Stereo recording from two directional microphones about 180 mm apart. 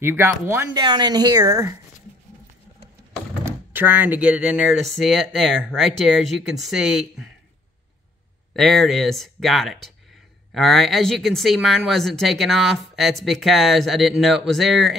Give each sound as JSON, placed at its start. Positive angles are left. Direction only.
{"t": 0.0, "sound": "speech", "side_deg": -10}
{"t": 0.7, "sound": "a woman's voice", "side_deg": -25}
{"t": 3.4, "sound": "speech", "side_deg": -10}
{"t": 8.5, "sound": "speech", "side_deg": 0}